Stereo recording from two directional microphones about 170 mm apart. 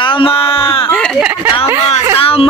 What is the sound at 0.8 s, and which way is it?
Speech, 5° left (ahead or behind).